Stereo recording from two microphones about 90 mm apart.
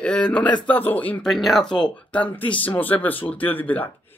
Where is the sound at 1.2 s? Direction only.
Centre (ahead or behind).